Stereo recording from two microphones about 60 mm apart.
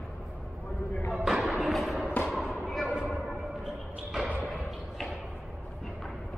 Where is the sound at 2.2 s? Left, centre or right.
Centre.